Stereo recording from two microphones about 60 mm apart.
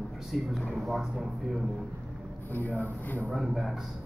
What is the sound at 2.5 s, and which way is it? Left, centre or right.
Speech, left.